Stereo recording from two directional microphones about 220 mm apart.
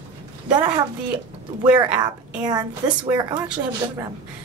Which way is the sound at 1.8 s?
20° right (ahead or behind).